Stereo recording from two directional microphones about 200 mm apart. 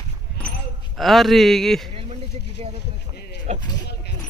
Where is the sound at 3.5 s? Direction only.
35° right (ahead or behind).